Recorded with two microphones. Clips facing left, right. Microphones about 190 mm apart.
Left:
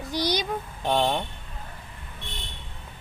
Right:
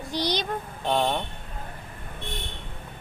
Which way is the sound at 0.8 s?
5° left (ahead or behind).